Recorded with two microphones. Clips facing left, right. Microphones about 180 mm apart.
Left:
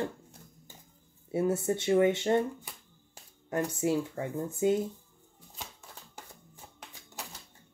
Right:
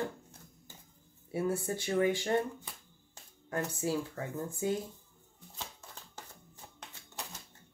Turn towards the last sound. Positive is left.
turn(degrees=10)  # may be behind; listen again after turning